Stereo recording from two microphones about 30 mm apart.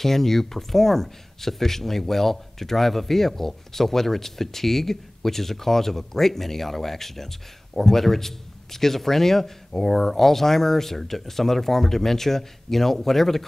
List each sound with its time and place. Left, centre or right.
0.0 s speech: centre